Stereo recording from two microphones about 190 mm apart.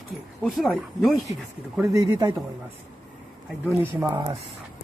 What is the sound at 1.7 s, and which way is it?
Speech, 15° right (ahead or behind).